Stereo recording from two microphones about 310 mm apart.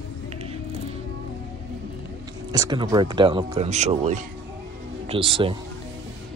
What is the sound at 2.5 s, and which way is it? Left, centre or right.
Speech, centre.